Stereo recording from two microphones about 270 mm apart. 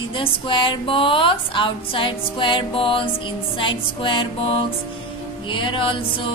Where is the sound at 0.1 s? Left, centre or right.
Centre.